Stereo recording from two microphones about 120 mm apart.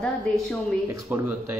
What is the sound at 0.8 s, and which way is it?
Speech, 20° right (ahead or behind).